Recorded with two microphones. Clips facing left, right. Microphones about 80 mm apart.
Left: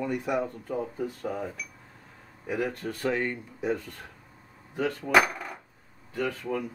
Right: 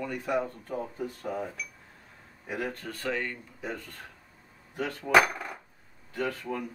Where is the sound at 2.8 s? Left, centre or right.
Centre.